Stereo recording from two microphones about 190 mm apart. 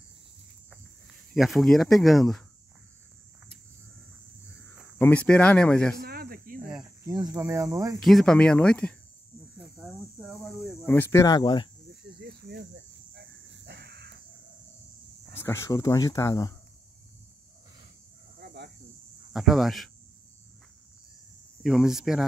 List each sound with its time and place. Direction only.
1.3 s speech: centre (ahead or behind)
4.5 s a sound: 15° left (ahead or behind)
4.9 s speech: 10° left (ahead or behind)
6.0 s snake: 50° right (ahead or behind)
7.1 s speech: 15° right (ahead or behind)
8.0 s speech: centre (ahead or behind)
9.6 s cricket: 5° right (ahead or behind)
10.9 s speech: 10° left (ahead or behind)
12.2 s cricket: 55° right (ahead or behind)
13.7 s a sound: 60° right (ahead or behind)
15.3 s speech: 15° left (ahead or behind)
18.4 s a sound: 60° right (ahead or behind)
19.3 s speech: centre (ahead or behind)
21.6 s speech: centre (ahead or behind)